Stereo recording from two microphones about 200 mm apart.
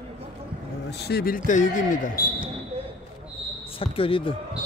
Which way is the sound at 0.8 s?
55° left (ahead or behind).